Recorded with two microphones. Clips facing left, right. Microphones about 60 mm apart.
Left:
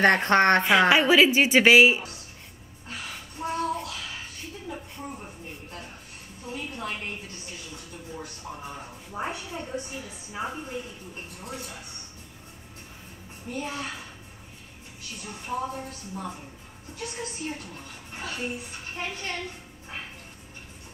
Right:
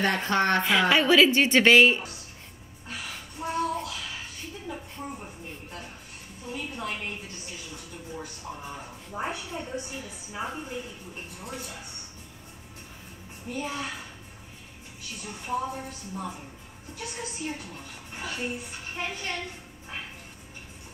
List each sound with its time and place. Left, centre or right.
0.0 s speech: left
0.7 s a woman's voice: centre
2.9 s a sound: centre
7.7 s television: centre
8.5 s a woman's voice: centre
13.5 s a woman's voice: centre
15.4 s a woman's voice: centre